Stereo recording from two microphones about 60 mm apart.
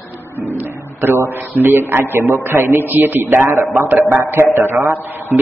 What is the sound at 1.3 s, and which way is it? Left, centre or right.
A man's voice, right.